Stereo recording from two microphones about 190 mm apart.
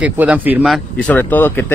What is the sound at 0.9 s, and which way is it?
Speech, 10° left (ahead or behind).